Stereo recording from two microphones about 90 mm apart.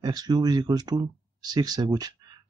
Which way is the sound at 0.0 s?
50° right (ahead or behind).